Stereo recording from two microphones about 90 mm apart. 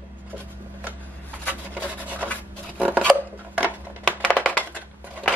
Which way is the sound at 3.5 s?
20° right (ahead or behind).